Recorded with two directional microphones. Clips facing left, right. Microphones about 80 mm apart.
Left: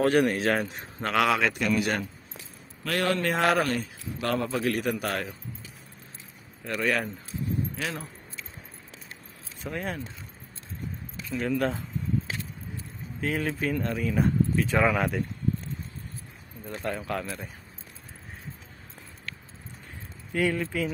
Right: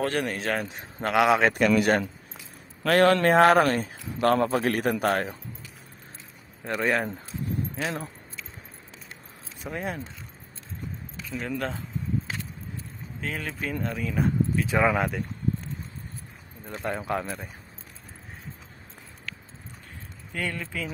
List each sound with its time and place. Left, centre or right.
0.0 s speech: centre
1.1 s speech: centre
1.4 s speech: right
3.3 s speech: right
6.6 s speech: right
9.6 s speech: centre
11.3 s speech: centre
13.2 s speech: centre
16.8 s speech: centre
20.3 s speech: centre